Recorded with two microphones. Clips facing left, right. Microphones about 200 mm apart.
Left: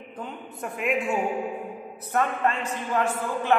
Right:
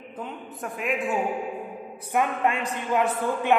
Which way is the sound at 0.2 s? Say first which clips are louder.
Even; centre (ahead or behind).